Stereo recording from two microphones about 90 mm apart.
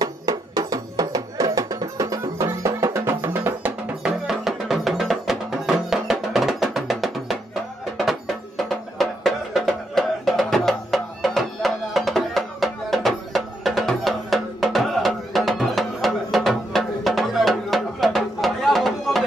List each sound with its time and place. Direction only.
0.0 s music: 40° right (ahead or behind); by 3.7 s 25° right (ahead or behind)
4.0 s music: 5° right (ahead or behind)